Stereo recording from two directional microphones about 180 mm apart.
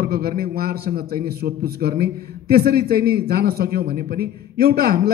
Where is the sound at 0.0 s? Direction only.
60° right (ahead or behind).